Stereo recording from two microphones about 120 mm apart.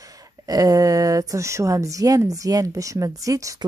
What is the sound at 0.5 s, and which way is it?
A woman's voice, 30° right (ahead or behind).